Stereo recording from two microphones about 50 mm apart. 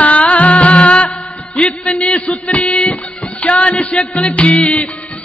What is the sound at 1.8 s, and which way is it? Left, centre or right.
Speech, left.